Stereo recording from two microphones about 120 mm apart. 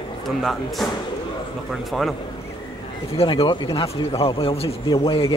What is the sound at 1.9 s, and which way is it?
Speech, centre (ahead or behind).